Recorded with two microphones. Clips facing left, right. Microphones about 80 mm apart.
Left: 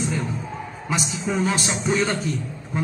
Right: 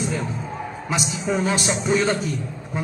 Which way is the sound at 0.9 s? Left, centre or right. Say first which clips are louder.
Right 1 dB; centre.